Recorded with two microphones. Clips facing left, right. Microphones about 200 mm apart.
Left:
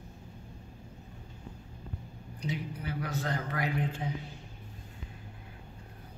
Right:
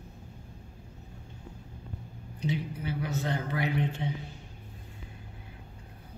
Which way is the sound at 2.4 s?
25° right (ahead or behind).